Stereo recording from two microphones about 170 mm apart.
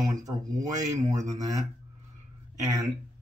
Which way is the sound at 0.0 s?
20° right (ahead or behind).